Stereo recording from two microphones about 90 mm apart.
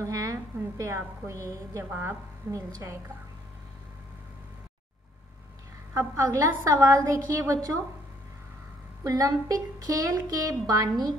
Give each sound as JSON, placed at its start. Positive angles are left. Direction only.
{"t": 0.0, "sound": "a woman's voice", "side_deg": -40}
{"t": 1.9, "sound": "a woman's voice", "side_deg": -25}
{"t": 5.9, "sound": "speech", "side_deg": -30}
{"t": 9.0, "sound": "speech", "side_deg": -40}